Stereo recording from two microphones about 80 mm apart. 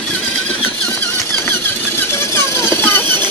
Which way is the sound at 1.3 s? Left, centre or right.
Left.